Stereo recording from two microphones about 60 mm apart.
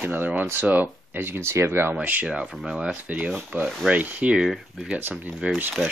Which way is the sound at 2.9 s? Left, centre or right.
Right.